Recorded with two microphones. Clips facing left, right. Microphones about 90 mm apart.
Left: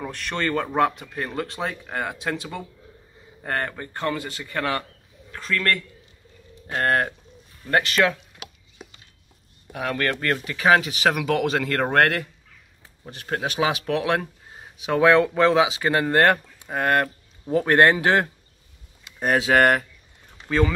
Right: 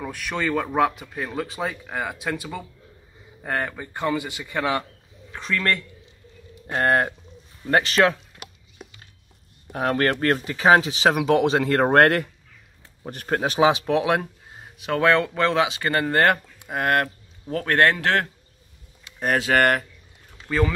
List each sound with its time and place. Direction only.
0.0 s a man's voice: 5° right (ahead or behind)
6.8 s speech: 20° right (ahead or behind)
8.8 s a sound: centre (ahead or behind)
9.7 s speech: 30° right (ahead or behind)
13.6 s speech: 25° right (ahead or behind)
14.6 s speech: centre (ahead or behind)
17.5 s speech: 15° left (ahead or behind)
19.0 s speech: centre (ahead or behind)